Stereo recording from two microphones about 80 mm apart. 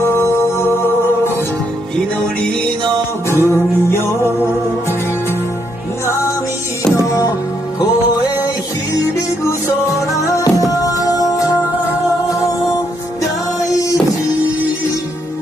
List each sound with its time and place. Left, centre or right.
0.0 s music: left
3.3 s music: left
6.0 s music: left
9.4 s music: left
13.7 s music: left